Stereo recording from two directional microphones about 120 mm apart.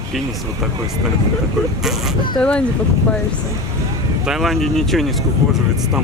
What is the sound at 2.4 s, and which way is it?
Speech, 10° left (ahead or behind).